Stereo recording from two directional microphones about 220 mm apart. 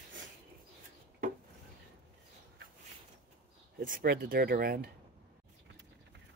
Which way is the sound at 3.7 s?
40° right (ahead or behind).